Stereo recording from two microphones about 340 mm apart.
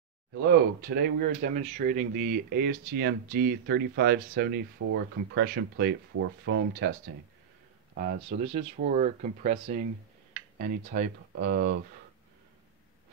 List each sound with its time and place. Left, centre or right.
0.5 s speech: right
4.8 s speech: right
5.3 s speech: right
8.3 s speech: centre